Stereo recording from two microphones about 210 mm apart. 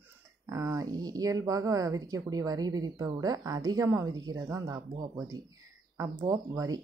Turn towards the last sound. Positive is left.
turn(degrees=-15)  # may be behind; listen again after turning